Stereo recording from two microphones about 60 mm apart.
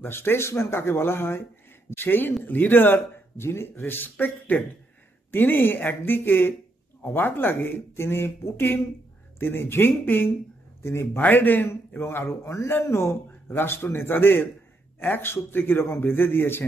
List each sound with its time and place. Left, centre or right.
0.0 s speech: left
11.1 s speech: left
12.4 s speech: left